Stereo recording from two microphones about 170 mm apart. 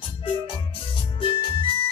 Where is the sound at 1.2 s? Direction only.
30° left (ahead or behind).